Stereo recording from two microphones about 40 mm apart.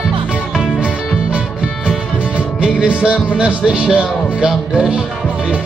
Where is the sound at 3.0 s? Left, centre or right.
Right.